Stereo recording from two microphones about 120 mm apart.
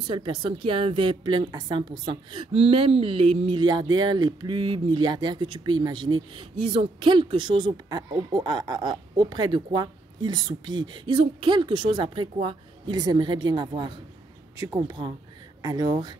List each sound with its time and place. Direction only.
0.0 s a woman's voice: 45° right (ahead or behind)